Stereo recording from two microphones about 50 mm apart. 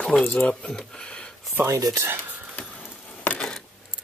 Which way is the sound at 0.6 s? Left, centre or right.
Centre.